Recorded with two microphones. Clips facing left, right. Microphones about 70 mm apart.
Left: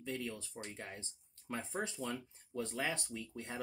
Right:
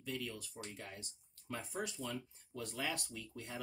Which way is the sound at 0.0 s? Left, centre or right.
Left.